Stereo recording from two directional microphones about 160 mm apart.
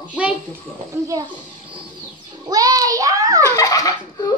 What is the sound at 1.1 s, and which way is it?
Speech, 20° right (ahead or behind).